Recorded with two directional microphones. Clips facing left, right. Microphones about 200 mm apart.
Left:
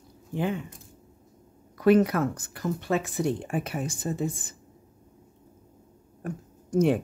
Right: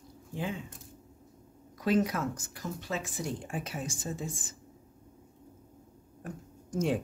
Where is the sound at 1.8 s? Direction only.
60° left (ahead or behind).